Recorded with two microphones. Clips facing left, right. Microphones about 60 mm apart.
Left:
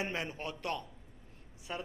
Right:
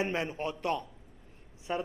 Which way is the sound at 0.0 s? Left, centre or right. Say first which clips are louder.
Right 5 dB; right.